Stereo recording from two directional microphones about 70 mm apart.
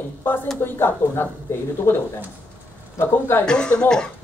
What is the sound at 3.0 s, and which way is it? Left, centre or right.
Speech, left.